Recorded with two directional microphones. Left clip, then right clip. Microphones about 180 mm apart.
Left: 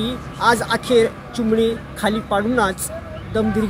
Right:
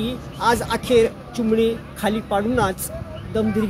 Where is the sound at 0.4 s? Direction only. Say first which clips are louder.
Left 3 dB; 10° right (ahead or behind).